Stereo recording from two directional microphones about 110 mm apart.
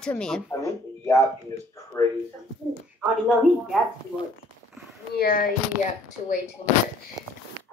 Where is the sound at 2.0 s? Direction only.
25° left (ahead or behind).